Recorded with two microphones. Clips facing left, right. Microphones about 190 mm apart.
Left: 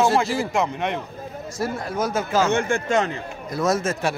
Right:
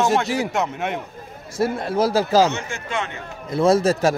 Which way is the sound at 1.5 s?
25° right (ahead or behind).